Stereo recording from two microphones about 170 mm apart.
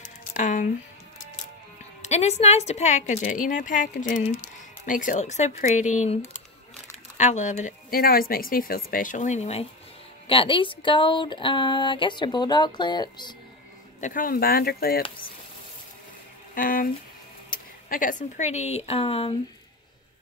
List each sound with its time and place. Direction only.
0.0 s a sound: 45° left (ahead or behind)
2.0 s speech: 40° left (ahead or behind)
7.2 s speech: 45° left (ahead or behind); by 13.3 s 25° left (ahead or behind)
14.0 s speech: 55° left (ahead or behind)
16.5 s speech: 55° left (ahead or behind); by 19.3 s 35° left (ahead or behind)